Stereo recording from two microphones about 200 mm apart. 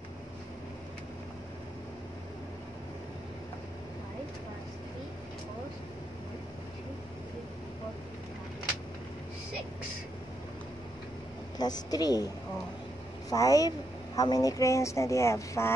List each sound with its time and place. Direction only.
11.5 s a woman's voice: 20° left (ahead or behind)
13.3 s speech: 15° left (ahead or behind)